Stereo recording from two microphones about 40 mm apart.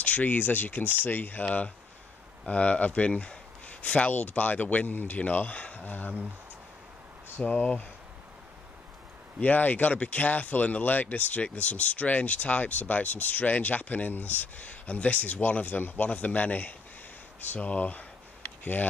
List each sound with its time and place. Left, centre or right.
0.0 s speech: left
1.4 s speech: left
7.3 s speech: left
9.4 s speech: left